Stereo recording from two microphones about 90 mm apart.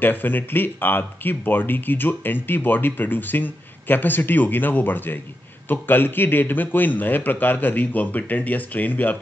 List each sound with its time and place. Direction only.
0.0 s speech: 20° left (ahead or behind)